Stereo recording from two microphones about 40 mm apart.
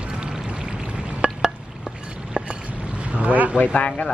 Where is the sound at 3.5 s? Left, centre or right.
Left.